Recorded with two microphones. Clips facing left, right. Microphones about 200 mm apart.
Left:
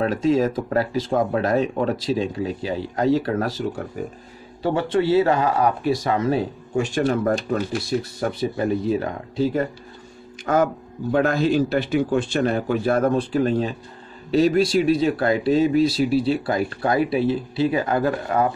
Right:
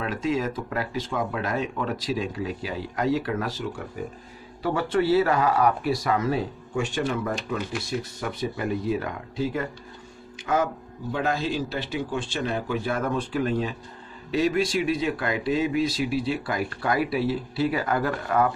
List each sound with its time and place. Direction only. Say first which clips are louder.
0.0 s speech: left 7 dB; 35° left (ahead or behind)
4.6 s a man's voice: left 3 dB; 25° left (ahead or behind)
10.4 s a man's voice: left 5 dB; 50° left (ahead or behind); by 18.5 s 25° left (ahead or behind)